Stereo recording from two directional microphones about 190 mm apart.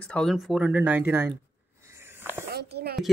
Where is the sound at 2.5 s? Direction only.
60° right (ahead or behind).